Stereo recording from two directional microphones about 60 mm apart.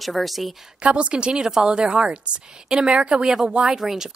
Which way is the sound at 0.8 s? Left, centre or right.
Centre.